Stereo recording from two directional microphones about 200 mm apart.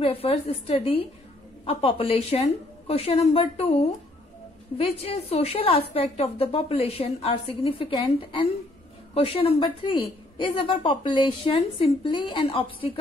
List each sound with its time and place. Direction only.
0.0 s a woman's voice: 30° left (ahead or behind)